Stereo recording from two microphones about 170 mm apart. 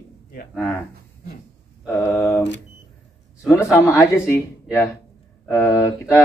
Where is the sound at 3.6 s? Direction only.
15° left (ahead or behind).